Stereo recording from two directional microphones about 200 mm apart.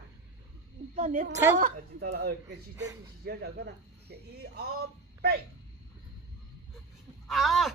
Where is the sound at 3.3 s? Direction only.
55° right (ahead or behind).